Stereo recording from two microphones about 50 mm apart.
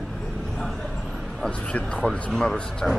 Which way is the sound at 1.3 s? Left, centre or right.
Centre.